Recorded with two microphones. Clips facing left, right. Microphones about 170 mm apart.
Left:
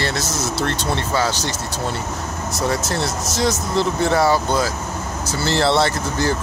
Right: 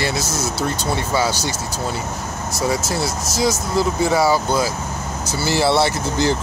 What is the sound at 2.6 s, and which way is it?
Speech, 10° right (ahead or behind).